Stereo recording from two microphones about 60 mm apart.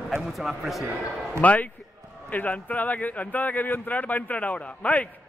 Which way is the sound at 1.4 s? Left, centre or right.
Left.